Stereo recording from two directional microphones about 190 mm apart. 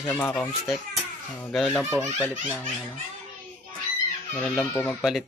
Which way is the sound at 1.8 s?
15° right (ahead or behind).